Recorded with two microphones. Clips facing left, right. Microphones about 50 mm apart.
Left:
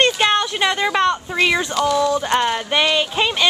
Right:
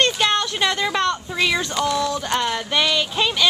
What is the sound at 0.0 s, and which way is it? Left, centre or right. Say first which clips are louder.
Speech: left 3 dB; centre.